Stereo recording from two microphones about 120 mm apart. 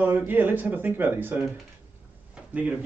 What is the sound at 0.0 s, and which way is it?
Speech, 15° right (ahead or behind).